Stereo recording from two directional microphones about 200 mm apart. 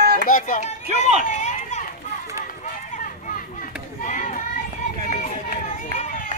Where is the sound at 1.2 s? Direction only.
35° left (ahead or behind).